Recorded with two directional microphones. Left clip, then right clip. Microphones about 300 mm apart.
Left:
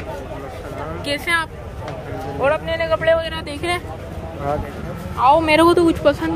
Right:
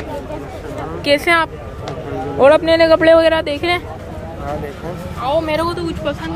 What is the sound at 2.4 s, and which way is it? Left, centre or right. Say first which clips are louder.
Speech: right 9 dB; right.